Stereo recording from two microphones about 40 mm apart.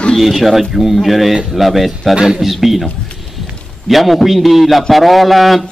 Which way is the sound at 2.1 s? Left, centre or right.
Centre.